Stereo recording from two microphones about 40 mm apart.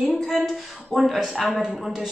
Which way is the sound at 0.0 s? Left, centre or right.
Centre.